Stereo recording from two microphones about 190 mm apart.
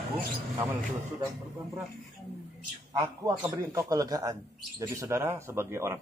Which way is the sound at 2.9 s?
20° right (ahead or behind).